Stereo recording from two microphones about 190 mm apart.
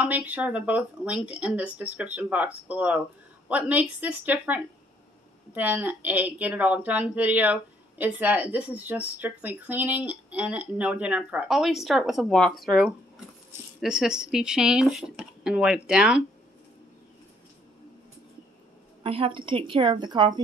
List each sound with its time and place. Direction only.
0.0 s a woman's voice: 10° right (ahead or behind)
19.0 s a woman's voice: 30° right (ahead or behind)